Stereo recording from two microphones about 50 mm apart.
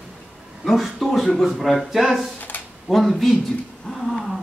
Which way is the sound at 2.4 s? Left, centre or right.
Left.